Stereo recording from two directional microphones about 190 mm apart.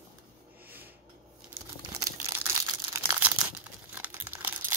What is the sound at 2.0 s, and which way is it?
Crumpling, 15° right (ahead or behind).